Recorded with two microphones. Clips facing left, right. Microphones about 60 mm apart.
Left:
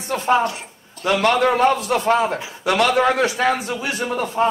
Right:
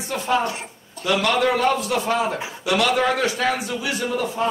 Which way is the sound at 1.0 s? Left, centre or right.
Left.